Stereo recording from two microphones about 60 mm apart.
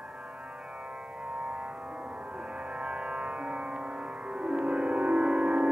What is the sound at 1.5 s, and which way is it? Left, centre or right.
Music, centre.